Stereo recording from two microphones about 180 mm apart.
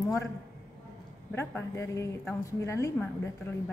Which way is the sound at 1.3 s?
15° left (ahead or behind).